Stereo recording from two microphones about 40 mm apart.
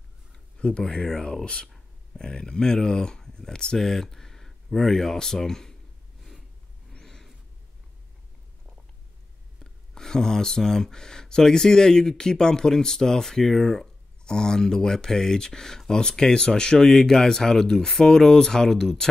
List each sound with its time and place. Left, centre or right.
0.6 s speech: left
7.0 s a sound: centre
9.6 s speech: centre